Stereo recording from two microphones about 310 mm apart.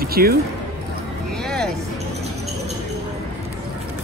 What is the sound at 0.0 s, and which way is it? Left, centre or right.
Speech, right.